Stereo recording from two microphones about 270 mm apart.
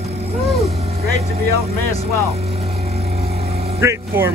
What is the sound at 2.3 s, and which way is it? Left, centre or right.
Vehicle, right.